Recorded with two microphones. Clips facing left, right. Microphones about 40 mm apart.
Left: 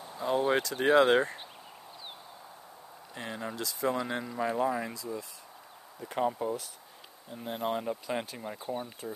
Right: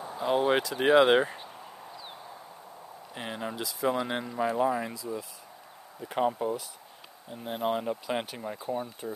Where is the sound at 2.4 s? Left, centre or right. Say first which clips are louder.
Right 3 dB; centre.